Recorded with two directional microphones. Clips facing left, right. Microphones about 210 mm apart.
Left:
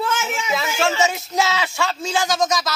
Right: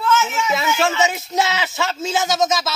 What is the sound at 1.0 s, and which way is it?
Speech, centre (ahead or behind).